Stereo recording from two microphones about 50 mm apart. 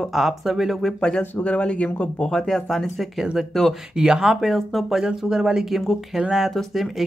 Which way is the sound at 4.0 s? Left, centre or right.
Centre.